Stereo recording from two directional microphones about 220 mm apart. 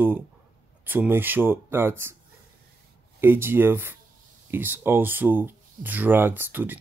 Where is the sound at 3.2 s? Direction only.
10° right (ahead or behind).